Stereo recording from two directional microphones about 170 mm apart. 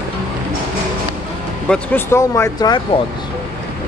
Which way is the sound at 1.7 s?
10° left (ahead or behind).